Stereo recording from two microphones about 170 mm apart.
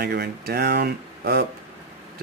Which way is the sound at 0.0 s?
65° right (ahead or behind).